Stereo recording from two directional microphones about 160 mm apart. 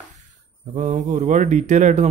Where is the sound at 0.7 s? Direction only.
50° right (ahead or behind).